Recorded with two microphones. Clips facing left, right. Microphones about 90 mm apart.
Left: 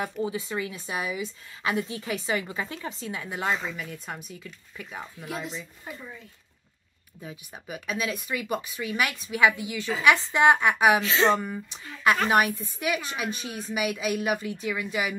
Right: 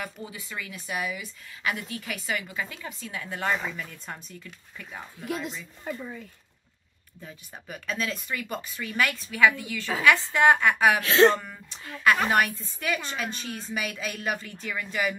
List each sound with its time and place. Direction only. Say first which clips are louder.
0.0 s a woman's voice: left 8 dB; 25° left (ahead or behind)
7.2 s a woman's voice: left 3 dB; 10° left (ahead or behind)